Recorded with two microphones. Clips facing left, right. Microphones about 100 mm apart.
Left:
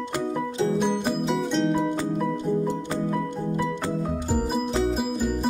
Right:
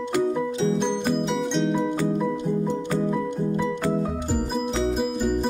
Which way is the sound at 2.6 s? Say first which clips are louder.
Right 2 dB; 20° left (ahead or behind).